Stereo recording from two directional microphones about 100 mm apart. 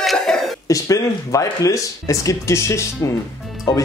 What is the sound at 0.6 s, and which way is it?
Speech, 35° left (ahead or behind).